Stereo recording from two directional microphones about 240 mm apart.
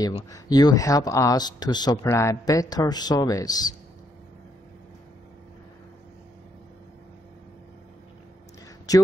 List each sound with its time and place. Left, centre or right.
0.3 s speech: centre
8.9 s a man's voice: centre